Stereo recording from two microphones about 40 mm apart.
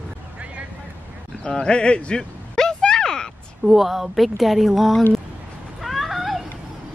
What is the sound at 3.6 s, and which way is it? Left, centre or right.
Speech, centre.